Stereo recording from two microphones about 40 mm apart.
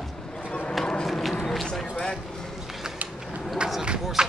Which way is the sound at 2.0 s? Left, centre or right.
Centre.